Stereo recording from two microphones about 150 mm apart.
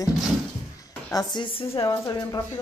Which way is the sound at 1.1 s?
25° left (ahead or behind).